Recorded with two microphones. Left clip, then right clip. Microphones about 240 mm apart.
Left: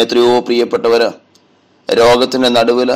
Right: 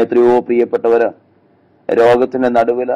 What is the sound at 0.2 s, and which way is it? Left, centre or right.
A man's voice, left.